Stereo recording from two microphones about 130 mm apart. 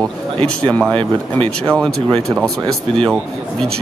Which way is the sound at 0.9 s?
40° right (ahead or behind).